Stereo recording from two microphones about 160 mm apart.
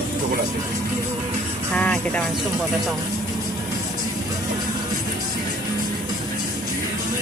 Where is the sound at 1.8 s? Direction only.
10° left (ahead or behind).